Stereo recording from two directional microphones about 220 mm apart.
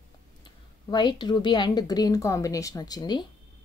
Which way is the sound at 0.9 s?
20° left (ahead or behind).